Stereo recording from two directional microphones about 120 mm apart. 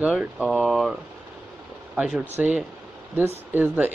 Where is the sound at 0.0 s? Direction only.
10° right (ahead or behind).